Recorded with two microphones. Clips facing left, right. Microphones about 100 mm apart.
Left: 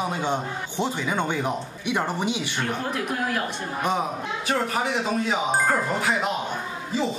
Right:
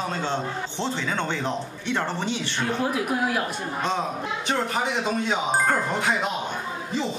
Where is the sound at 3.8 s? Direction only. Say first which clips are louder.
Left 2 dB; 15° left (ahead or behind).